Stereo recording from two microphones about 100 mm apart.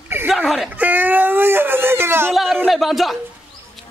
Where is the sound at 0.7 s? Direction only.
15° right (ahead or behind).